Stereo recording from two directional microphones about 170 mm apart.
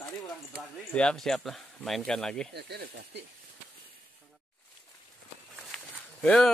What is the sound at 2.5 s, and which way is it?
Speech, 70° right (ahead or behind).